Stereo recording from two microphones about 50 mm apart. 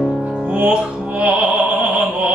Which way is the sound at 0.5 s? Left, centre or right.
Right.